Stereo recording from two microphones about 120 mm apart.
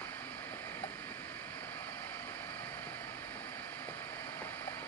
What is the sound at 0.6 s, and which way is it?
Vehicle, 15° left (ahead or behind).